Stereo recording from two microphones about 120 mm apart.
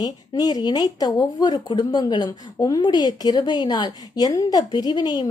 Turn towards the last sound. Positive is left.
turn(degrees=35)  # may be behind; listen again after turning